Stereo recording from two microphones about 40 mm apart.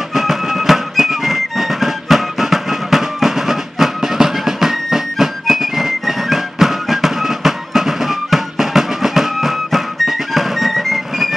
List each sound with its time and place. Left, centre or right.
0.1 s music: centre